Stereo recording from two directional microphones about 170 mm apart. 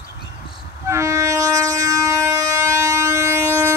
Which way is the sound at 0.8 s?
15° right (ahead or behind).